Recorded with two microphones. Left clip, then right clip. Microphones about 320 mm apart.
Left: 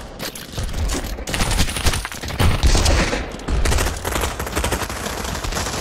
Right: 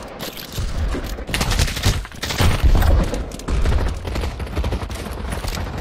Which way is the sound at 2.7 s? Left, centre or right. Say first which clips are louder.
Left 4 dB; left.